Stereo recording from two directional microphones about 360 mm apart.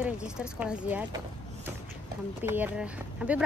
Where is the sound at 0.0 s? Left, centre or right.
Centre.